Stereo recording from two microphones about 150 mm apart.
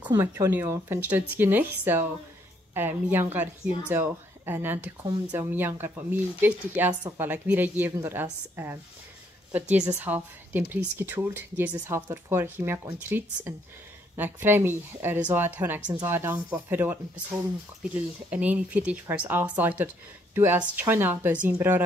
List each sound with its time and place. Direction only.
0.0 s speech: 25° right (ahead or behind)
0.3 s speech: 15° right (ahead or behind)